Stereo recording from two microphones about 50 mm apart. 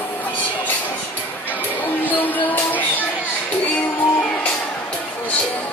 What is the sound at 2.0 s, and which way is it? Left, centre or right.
Music, left.